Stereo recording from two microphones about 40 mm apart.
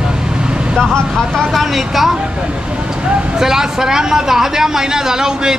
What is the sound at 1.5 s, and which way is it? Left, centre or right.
Speech, centre.